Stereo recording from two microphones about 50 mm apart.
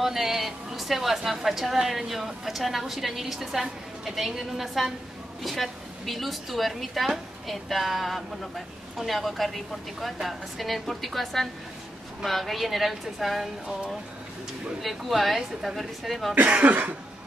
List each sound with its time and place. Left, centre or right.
0.0 s a woman's voice: centre
14.8 s a woman's voice: centre
16.4 s cough: right